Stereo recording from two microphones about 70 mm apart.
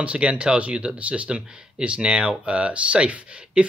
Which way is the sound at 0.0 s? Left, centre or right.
Centre.